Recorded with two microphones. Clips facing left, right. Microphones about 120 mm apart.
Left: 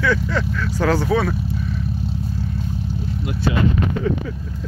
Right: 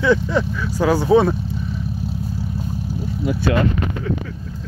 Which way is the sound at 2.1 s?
5° right (ahead or behind).